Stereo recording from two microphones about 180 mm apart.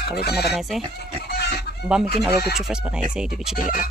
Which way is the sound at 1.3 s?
65° left (ahead or behind).